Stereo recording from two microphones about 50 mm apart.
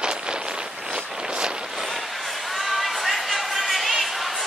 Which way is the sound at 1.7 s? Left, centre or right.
Centre.